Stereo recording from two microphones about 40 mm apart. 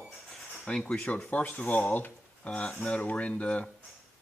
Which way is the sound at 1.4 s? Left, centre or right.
Left.